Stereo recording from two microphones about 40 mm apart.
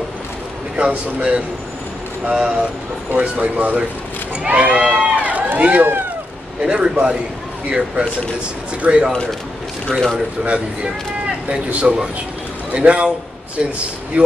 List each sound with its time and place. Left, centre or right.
0.7 s a man's voice: right
4.5 s run: right
5.6 s speech: right
6.6 s a man's voice: right
8.8 s a man's voice: right
9.8 s speech: centre
10.4 s a man's voice: right
14.1 s speech: right